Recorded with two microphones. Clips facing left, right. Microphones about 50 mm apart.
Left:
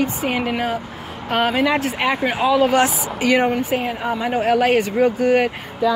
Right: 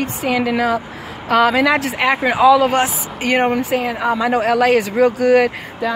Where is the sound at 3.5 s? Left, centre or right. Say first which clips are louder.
Right 2 dB; right.